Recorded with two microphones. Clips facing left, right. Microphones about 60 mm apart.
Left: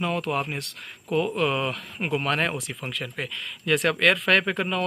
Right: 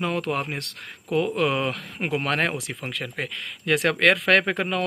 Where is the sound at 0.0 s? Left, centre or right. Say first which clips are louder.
Even; right.